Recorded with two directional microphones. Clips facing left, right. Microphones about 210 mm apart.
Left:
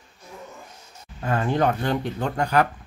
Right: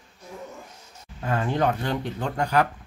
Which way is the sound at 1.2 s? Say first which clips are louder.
Left 2 dB; 50° left (ahead or behind).